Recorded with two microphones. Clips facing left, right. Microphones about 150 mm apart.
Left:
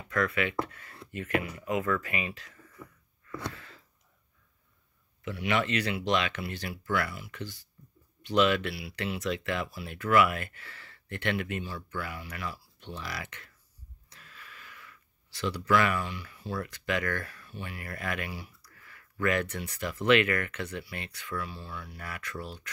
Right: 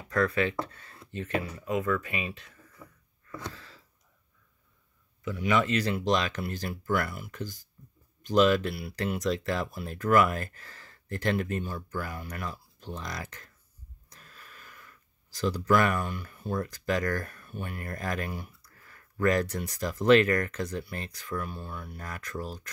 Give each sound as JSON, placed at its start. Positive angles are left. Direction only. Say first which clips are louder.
{"t": 0.1, "sound": "speech", "louder": "right 3 dB", "side_deg": -35}
{"t": 6.0, "sound": "speech", "louder": "right 2 dB", "side_deg": -40}
{"t": 14.0, "sound": "a sound", "louder": "even", "side_deg": -40}
{"t": 16.6, "sound": "speech", "louder": "right 1 dB", "side_deg": -40}